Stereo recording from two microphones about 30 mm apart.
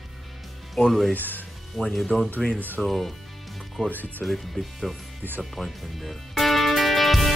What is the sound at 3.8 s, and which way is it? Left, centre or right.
Speech, left.